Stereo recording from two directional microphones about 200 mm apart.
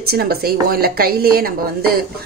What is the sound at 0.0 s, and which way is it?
Speech, 50° right (ahead or behind).